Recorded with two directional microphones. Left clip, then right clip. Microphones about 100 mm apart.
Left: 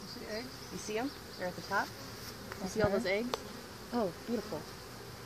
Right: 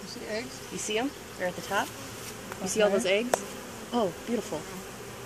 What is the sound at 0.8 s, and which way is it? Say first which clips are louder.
Speech: right 7 dB; 10° right (ahead or behind).